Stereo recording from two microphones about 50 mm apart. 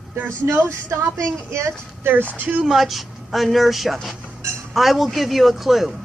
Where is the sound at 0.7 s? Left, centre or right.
Right.